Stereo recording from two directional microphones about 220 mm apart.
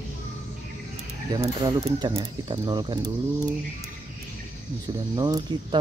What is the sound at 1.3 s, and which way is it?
Speech, 25° right (ahead or behind).